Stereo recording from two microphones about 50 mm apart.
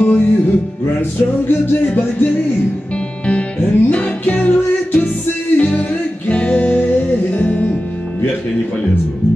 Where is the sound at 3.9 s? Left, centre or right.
Left.